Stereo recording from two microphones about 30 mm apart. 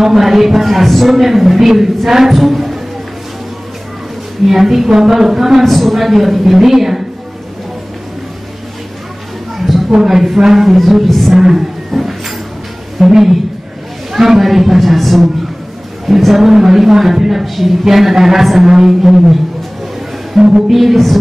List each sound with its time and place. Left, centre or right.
0.0 s a woman's voice: centre
4.5 s a woman's voice: centre
4.8 s a woman's voice: centre
9.6 s a sound: centre
9.8 s speech: centre
11.1 s music: centre
11.3 s a sound: centre
13.1 s a woman's voice: centre
20.4 s a woman's voice: centre